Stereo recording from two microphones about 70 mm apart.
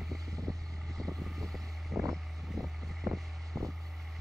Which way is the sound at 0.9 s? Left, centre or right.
Centre.